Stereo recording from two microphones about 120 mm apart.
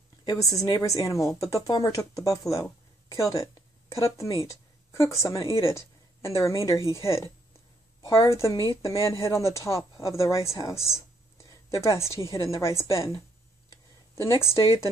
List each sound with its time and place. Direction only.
0.2 s a woman's voice: 30° left (ahead or behind)
2.5 s a sound: 25° left (ahead or behind)
3.9 s a woman's voice: 25° left (ahead or behind)
14.2 s a woman's voice: 25° left (ahead or behind)